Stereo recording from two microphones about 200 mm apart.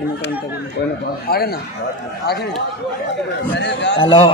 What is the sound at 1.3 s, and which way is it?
A man's voice, 50° left (ahead or behind).